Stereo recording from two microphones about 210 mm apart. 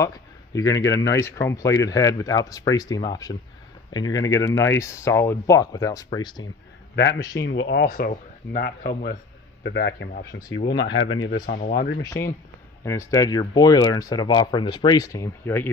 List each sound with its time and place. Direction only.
0.0 s speech: 15° left (ahead or behind)
7.3 s speech: 60° left (ahead or behind)
11.2 s speech: 40° left (ahead or behind)
12.0 s speech: 15° left (ahead or behind)